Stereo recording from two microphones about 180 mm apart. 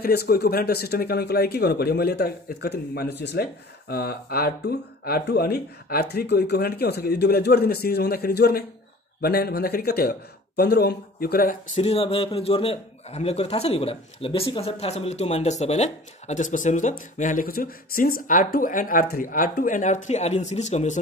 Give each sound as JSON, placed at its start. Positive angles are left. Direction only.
{"t": 0.0, "sound": "speech", "side_deg": 60}
{"t": 3.9, "sound": "speech", "side_deg": 60}
{"t": 11.7, "sound": "a man's voice", "side_deg": 35}